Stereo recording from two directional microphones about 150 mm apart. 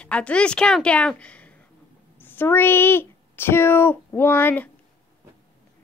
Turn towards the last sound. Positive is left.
turn(degrees=10)  # may be behind; listen again after turning